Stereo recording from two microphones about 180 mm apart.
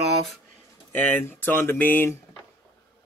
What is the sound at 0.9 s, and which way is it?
Speech, 10° left (ahead or behind).